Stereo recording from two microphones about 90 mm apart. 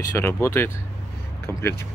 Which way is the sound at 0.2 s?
25° left (ahead or behind).